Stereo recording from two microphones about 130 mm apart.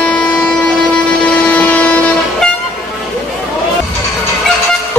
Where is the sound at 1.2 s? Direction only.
10° left (ahead or behind).